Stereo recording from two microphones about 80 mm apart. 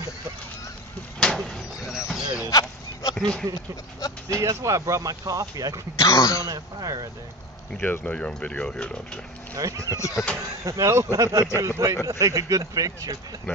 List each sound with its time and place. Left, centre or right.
1.2 s vehicle: centre
1.8 s basketball bounce: centre
2.5 s a sound: left
3.2 s speech: centre
4.3 s speech: right
5.9 s speech: left
6.4 s speech: right
7.8 s speech: centre
9.6 s speech: right
9.8 s speech: left
10.6 s speech: right
12.1 s speech: right